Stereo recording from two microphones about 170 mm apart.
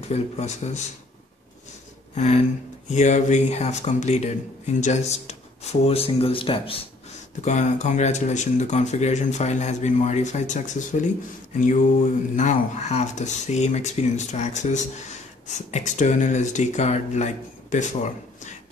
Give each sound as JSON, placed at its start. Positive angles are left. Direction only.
{"t": 0.1, "sound": "speech", "side_deg": 40}
{"t": 2.1, "sound": "speech", "side_deg": 40}
{"t": 7.4, "sound": "speech", "side_deg": 45}